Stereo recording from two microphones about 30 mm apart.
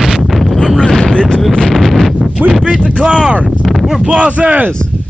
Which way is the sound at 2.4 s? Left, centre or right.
Right.